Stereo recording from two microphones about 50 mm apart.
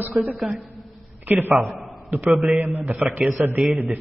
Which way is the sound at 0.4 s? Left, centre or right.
Centre.